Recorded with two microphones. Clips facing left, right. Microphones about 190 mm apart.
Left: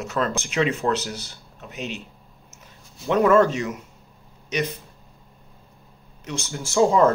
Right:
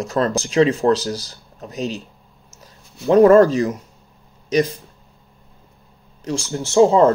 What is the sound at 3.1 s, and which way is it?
Speech, 35° right (ahead or behind).